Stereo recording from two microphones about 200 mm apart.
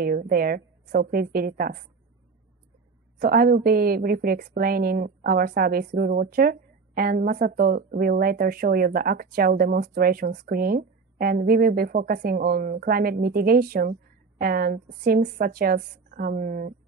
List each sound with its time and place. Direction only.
0.0 s speech: 45° right (ahead or behind)
3.2 s speech: 50° right (ahead or behind)